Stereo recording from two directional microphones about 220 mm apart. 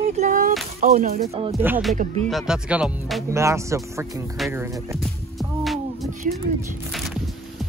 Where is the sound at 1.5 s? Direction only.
10° right (ahead or behind).